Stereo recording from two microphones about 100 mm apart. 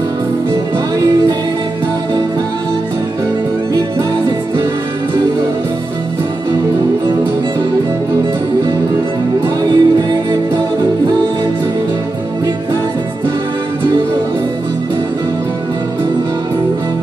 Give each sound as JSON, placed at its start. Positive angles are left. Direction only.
{"t": 9.6, "sound": "music", "side_deg": -45}